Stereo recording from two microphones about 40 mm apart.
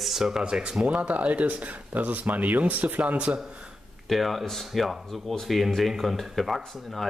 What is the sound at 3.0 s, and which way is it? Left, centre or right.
Speech, right.